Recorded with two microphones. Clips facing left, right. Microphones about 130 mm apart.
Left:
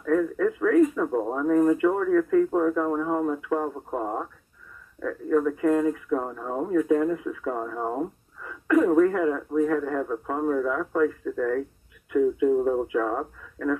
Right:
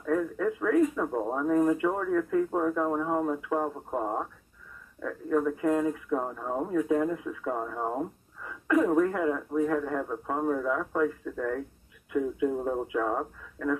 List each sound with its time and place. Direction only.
0.0 s a sound: 15° right (ahead or behind)
0.9 s speech: 10° right (ahead or behind)
12.6 s speech: 15° right (ahead or behind)